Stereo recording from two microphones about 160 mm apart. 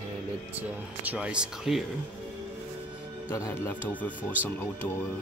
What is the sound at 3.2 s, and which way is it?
Speech, 20° left (ahead or behind).